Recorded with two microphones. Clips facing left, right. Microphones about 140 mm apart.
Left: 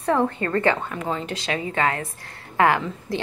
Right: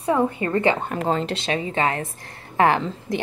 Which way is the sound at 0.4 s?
20° right (ahead or behind).